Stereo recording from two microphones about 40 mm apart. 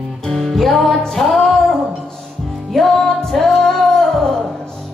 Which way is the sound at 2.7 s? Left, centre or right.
Centre.